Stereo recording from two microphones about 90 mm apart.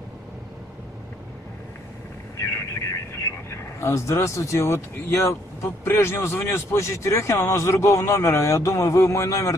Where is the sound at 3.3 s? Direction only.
30° left (ahead or behind).